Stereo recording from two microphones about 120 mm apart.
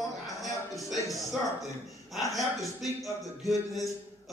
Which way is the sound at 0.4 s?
Centre (ahead or behind).